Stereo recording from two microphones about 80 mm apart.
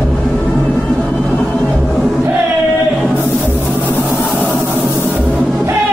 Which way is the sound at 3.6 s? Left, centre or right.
Centre.